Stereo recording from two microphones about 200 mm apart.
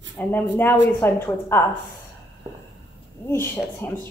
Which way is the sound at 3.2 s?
10° left (ahead or behind).